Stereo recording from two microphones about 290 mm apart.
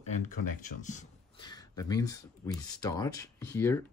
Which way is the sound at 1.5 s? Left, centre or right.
Centre.